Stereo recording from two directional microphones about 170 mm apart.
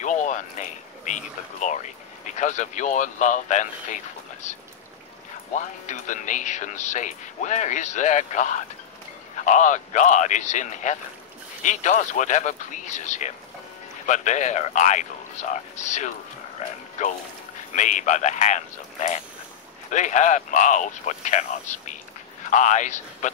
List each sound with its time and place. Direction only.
0.0 s speech: 45° left (ahead or behind)
5.5 s speech: 45° left (ahead or behind)
17.7 s speech: 45° left (ahead or behind)
19.9 s speech: 45° left (ahead or behind)